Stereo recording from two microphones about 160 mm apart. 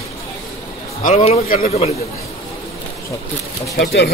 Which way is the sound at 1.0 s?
45° left (ahead or behind).